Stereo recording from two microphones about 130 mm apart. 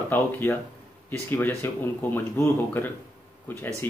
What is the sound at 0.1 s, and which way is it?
Speech, 15° left (ahead or behind).